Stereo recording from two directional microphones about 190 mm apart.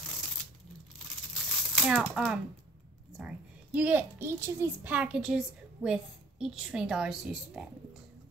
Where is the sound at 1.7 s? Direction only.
5° right (ahead or behind).